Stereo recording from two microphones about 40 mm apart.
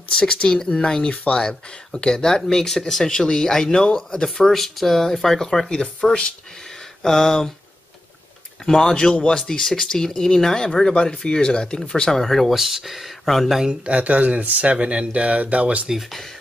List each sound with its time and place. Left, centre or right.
0.2 s speech: left
4.5 s speech: centre
5.7 s speech: left
7.0 s speech: centre
8.6 s speech: centre
12.1 s speech: centre
12.5 s speech: centre
13.7 s speech: right